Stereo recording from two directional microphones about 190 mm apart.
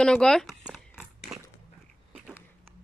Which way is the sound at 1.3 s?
5° right (ahead or behind).